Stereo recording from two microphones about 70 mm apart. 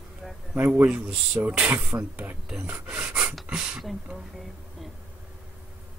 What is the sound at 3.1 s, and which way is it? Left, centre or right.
Pant, centre.